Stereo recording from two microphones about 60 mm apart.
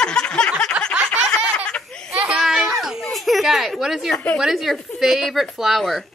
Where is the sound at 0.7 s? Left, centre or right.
Right.